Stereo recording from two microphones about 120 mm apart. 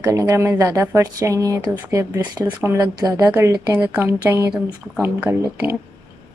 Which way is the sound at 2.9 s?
35° right (ahead or behind).